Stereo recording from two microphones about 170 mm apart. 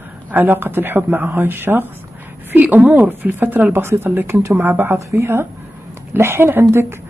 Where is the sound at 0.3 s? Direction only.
10° right (ahead or behind).